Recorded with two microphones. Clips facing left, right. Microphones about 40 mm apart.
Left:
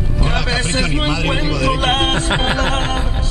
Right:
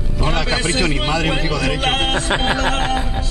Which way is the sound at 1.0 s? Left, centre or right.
Centre.